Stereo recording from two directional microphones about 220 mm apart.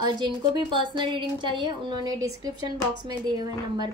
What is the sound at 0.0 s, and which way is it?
A woman's voice, 20° right (ahead or behind).